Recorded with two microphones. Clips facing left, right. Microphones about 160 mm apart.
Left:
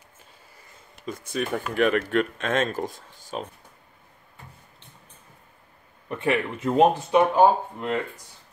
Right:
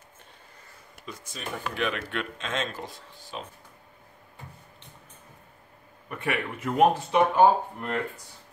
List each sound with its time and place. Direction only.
1.0 s speech: 55° left (ahead or behind)
6.0 s speech: 30° left (ahead or behind)